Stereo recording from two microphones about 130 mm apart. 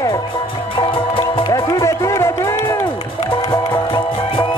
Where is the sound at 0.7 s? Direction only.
40° left (ahead or behind).